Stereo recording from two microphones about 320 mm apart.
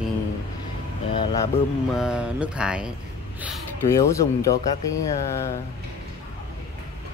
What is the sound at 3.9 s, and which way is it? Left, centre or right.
Speech, centre.